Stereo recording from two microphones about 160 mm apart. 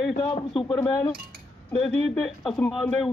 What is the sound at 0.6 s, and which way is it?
Speech, 25° left (ahead or behind).